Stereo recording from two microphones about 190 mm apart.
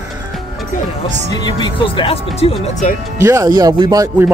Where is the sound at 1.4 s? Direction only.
25° left (ahead or behind).